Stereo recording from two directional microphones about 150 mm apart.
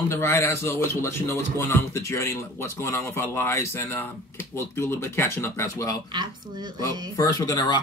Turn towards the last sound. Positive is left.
turn(degrees=25)  # may be behind; listen again after turning